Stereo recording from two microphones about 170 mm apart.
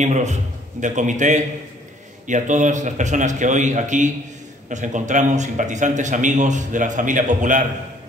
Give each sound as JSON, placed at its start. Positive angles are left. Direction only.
{"t": 0.0, "sound": "a man's voice", "side_deg": -45}